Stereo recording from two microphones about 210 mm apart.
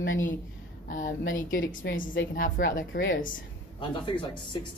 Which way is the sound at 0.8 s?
40° left (ahead or behind).